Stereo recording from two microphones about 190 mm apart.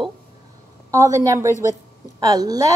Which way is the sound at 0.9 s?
15° right (ahead or behind).